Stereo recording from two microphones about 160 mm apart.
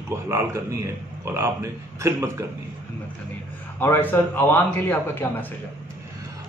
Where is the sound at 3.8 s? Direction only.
15° left (ahead or behind).